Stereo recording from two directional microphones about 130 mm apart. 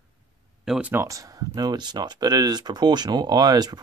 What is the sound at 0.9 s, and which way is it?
Speech, 25° right (ahead or behind).